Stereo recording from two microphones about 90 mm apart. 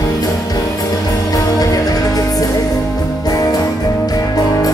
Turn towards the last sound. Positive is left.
turn(degrees=45)  # may be behind; listen again after turning